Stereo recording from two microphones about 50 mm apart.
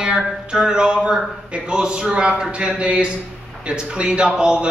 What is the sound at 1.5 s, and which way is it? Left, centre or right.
A man's voice, centre.